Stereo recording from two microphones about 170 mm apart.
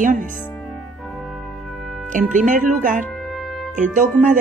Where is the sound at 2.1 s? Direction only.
50° right (ahead or behind).